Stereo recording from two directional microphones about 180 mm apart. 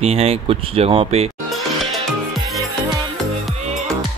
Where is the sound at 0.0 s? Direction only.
35° right (ahead or behind).